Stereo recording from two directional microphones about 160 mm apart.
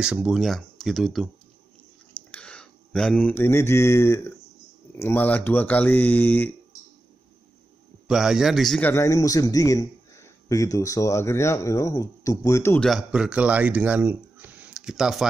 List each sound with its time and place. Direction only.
0.0 s speech: 5° right (ahead or behind)
2.3 s speech: 5° left (ahead or behind)
8.1 s speech: 5° right (ahead or behind)
8.9 s a man's voice: 20° left (ahead or behind)
12.8 s speech: 5° right (ahead or behind)